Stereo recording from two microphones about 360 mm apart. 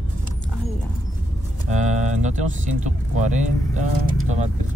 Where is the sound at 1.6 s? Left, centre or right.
Centre.